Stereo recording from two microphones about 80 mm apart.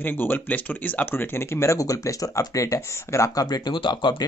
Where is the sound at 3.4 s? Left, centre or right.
Left.